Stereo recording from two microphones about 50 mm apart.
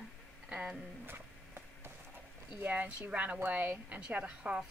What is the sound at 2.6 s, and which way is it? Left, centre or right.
Speech, right.